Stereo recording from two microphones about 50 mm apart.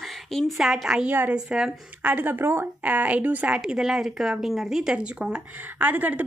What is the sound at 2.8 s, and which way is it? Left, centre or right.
Speech, right.